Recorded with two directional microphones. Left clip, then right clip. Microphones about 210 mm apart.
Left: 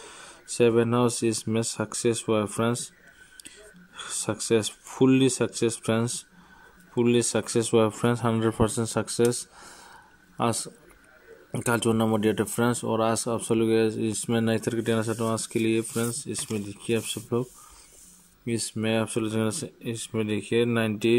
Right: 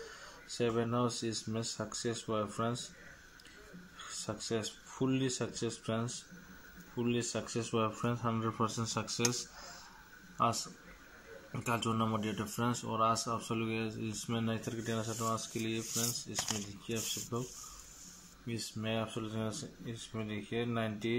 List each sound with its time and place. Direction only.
0.5 s speech: 55° left (ahead or behind)
4.0 s speech: 55° left (ahead or behind)
18.5 s speech: 45° left (ahead or behind)